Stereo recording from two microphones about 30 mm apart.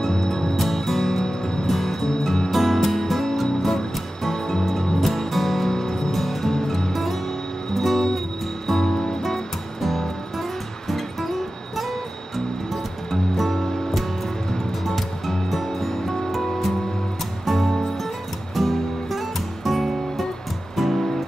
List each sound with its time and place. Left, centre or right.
0.1 s music: centre
0.6 s music: centre
1.2 s music: centre
2.5 s music: centre
6.1 s music: centre
6.5 s music: centre
6.9 s music: centre
8.9 s music: centre
9.2 s music: centre
13.1 s music: centre